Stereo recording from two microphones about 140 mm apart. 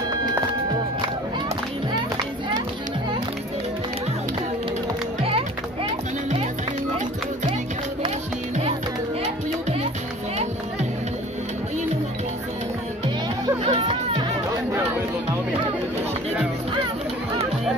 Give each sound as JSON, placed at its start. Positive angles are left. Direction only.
{"t": 10.3, "sound": "music", "side_deg": -55}
{"t": 13.7, "sound": "music", "side_deg": -40}